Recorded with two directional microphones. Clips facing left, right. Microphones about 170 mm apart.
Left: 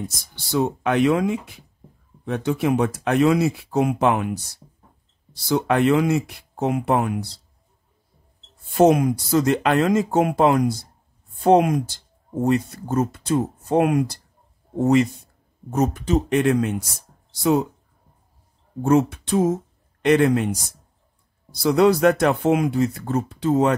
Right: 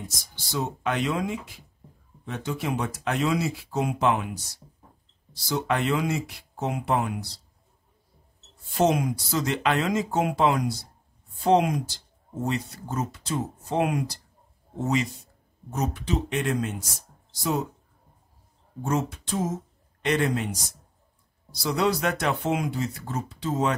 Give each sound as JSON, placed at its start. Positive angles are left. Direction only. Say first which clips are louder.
{"t": 0.5, "sound": "speech", "louder": "left 7 dB", "side_deg": 60}
{"t": 5.3, "sound": "speech", "louder": "left 6 dB", "side_deg": 55}
{"t": 8.7, "sound": "speech", "louder": "left 7 dB", "side_deg": 50}
{"t": 18.8, "sound": "speech", "louder": "left 9 dB", "side_deg": 60}
{"t": 21.6, "sound": "speech", "louder": "left 9 dB", "side_deg": 55}